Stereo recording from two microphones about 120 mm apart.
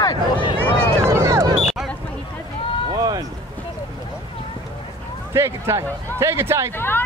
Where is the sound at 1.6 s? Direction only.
Centre (ahead or behind).